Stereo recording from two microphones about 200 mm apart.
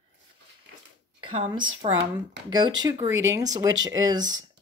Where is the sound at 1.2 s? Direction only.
25° right (ahead or behind).